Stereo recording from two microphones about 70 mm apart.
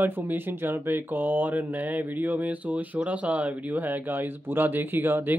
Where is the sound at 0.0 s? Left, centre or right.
Right.